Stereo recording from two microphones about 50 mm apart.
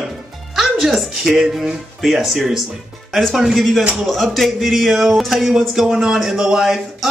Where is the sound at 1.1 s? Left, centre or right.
Centre.